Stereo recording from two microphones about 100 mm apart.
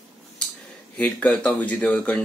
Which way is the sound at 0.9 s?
15° left (ahead or behind).